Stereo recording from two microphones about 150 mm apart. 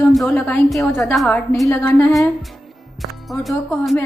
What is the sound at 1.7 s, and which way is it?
Speech, 15° left (ahead or behind).